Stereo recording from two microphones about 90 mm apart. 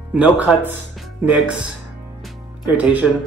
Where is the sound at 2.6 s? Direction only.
15° right (ahead or behind).